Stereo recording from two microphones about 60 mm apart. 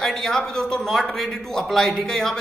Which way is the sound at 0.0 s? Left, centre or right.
Centre.